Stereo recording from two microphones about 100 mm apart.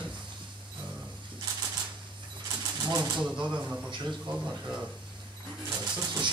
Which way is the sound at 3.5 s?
15° right (ahead or behind).